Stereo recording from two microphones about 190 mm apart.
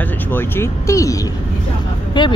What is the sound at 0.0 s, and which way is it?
Speech, 10° left (ahead or behind).